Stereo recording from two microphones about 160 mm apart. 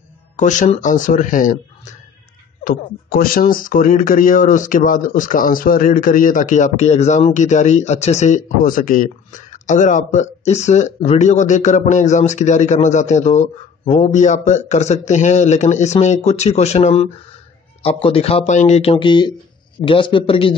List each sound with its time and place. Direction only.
0.4 s speech: 50° left (ahead or behind)
2.6 s speech: 65° left (ahead or behind); by 20.5 s 35° left (ahead or behind)